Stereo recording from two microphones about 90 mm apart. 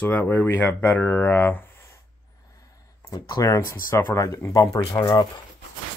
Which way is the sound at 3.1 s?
45° left (ahead or behind).